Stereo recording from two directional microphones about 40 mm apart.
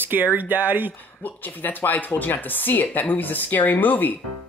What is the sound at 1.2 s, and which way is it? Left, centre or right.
Speech, left.